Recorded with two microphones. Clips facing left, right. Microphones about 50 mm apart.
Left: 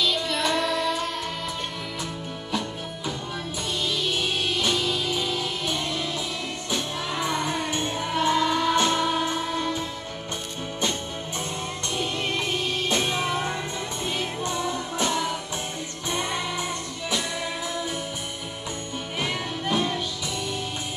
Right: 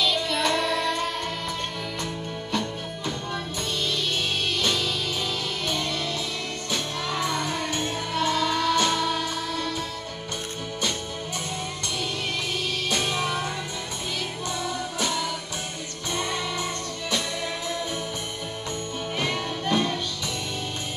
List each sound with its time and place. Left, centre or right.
0.0 s child singing: centre
4.6 s music: centre
12.9 s music: left
19.1 s music: centre